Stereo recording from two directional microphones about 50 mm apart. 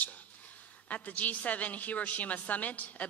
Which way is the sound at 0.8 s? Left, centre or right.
Left.